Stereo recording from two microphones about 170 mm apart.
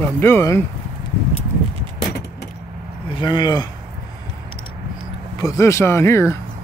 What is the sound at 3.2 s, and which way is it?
Speech, 25° left (ahead or behind).